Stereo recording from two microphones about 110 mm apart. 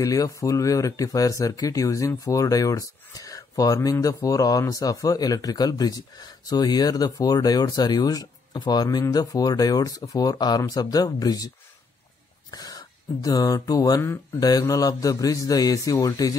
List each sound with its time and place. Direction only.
0.0 s speech: 30° left (ahead or behind)